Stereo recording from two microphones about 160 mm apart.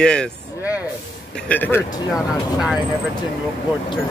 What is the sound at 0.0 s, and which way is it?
Speech, 5° left (ahead or behind).